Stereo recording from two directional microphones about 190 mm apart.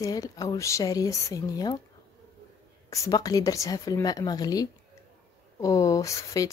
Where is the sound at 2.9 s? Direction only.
20° left (ahead or behind).